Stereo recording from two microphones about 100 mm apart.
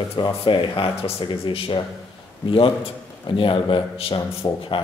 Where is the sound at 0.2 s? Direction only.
55° left (ahead or behind).